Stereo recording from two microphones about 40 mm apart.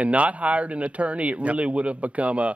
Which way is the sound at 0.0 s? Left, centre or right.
Right.